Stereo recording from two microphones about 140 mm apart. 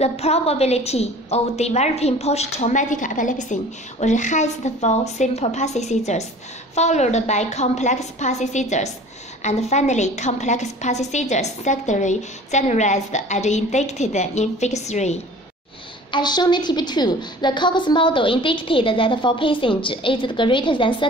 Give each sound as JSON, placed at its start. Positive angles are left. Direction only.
{"t": 0.0, "sound": "a woman's voice", "side_deg": 50}
{"t": 16.1, "sound": "a woman's voice", "side_deg": 30}